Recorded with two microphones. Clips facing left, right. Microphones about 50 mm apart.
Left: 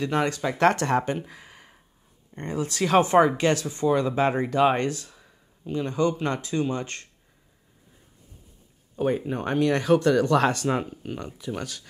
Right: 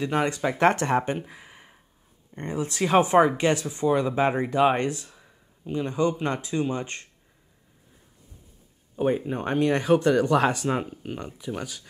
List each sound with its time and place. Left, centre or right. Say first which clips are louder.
0.0 s speech: even; centre
5.1 s a sound: even; centre
5.7 s speech: even; centre
8.9 s speech: right 1 dB; centre